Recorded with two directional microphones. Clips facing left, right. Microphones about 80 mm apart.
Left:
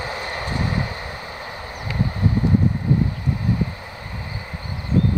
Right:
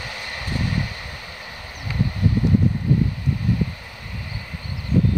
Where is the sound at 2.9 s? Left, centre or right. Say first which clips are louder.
Even; left.